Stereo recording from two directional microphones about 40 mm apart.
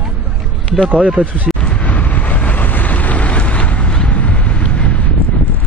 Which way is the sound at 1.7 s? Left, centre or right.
Left.